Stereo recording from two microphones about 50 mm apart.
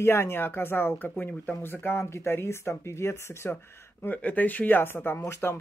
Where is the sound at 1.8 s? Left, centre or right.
Left.